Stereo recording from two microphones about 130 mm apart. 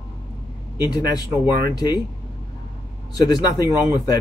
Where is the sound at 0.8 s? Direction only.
30° left (ahead or behind).